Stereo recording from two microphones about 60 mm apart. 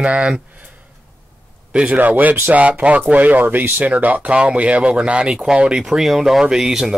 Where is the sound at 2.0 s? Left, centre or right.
Right.